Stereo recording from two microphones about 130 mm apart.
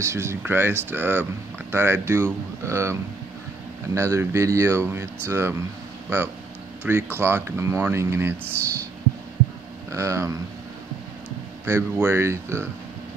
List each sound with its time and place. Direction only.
0.0 s speech: 20° right (ahead or behind)
9.8 s speech: 20° right (ahead or behind)
11.6 s speech: 20° right (ahead or behind)